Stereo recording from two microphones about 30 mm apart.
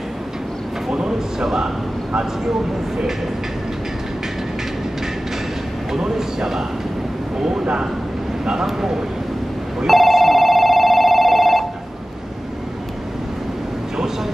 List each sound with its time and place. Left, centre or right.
0.9 s a sound: centre
5.9 s speech: centre
9.8 s telephone bell ringing: centre